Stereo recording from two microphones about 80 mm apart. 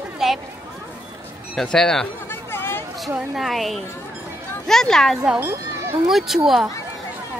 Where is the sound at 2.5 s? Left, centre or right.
Left.